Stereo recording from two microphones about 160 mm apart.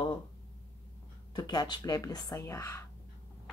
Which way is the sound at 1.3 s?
25° left (ahead or behind).